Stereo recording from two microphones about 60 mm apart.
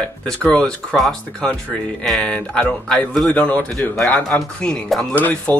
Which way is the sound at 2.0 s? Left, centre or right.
Centre.